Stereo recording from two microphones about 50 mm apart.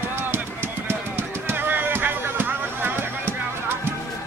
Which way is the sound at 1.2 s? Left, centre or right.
Right.